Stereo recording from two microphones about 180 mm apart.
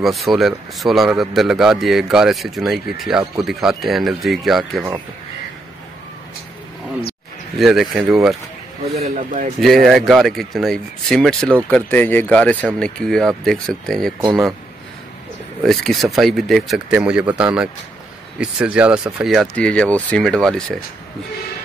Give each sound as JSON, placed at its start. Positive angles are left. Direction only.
{"t": 0.0, "sound": "speech", "side_deg": 0}
{"t": 7.5, "sound": "speech", "side_deg": 0}
{"t": 8.9, "sound": "speech", "side_deg": -45}
{"t": 9.8, "sound": "speech", "side_deg": 0}
{"t": 15.6, "sound": "speech", "side_deg": 0}